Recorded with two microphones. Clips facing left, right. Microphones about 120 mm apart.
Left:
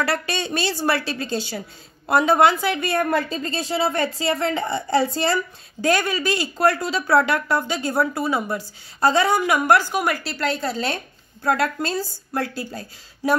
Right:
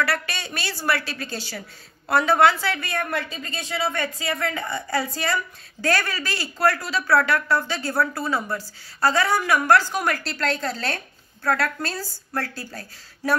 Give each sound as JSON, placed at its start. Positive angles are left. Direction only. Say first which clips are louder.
{"t": 0.0, "sound": "a woman's voice", "louder": "left 2 dB", "side_deg": 25}
{"t": 2.9, "sound": "a woman's voice", "louder": "left 6 dB", "side_deg": 40}